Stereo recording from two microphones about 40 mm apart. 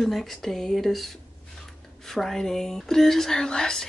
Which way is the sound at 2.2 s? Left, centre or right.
Centre.